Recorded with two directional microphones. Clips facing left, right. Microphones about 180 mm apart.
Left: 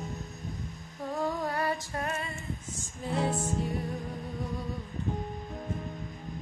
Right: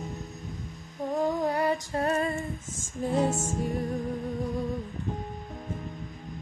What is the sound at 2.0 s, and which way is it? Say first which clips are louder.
Female singing: right 8 dB; 40° right (ahead or behind).